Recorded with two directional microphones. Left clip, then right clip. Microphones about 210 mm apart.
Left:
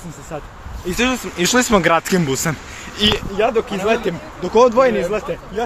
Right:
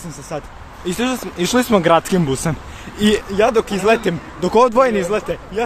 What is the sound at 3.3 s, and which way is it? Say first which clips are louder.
Speech: right 2 dB; 30° right (ahead or behind).